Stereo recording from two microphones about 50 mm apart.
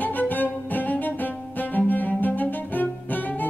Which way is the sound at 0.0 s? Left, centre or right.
Left.